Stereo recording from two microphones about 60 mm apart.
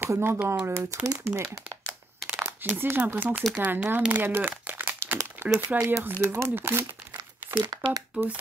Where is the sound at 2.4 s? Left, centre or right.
Right.